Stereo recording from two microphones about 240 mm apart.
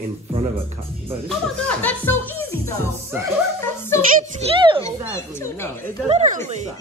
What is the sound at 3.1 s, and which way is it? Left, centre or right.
Music, centre.